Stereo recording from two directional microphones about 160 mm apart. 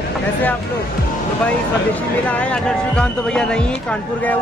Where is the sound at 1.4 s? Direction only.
10° left (ahead or behind).